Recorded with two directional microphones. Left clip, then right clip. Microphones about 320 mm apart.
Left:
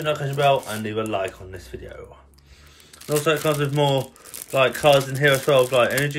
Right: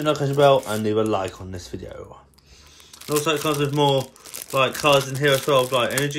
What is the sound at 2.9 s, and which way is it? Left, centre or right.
A man's voice, centre.